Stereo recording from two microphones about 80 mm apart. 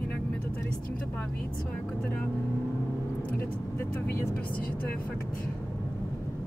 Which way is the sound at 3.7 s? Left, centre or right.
Left.